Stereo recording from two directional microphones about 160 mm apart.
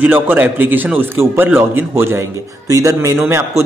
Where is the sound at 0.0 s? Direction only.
10° right (ahead or behind).